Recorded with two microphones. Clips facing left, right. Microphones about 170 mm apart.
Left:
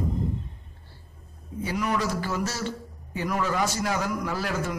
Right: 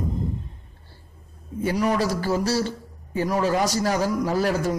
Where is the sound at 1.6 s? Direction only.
35° right (ahead or behind).